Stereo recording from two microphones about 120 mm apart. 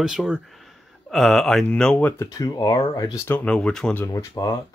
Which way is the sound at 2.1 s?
30° left (ahead or behind).